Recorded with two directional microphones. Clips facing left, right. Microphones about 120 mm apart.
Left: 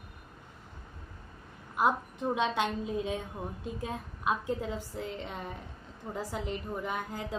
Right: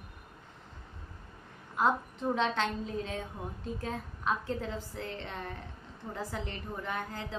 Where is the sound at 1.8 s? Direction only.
10° left (ahead or behind).